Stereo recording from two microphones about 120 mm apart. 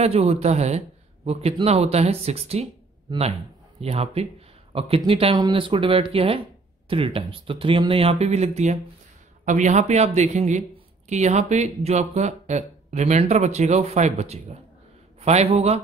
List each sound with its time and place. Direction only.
0.0 s a man's voice: 65° right (ahead or behind)
3.8 s a man's voice: 55° right (ahead or behind)
9.4 s a man's voice: 90° right; by 15.8 s 60° right (ahead or behind)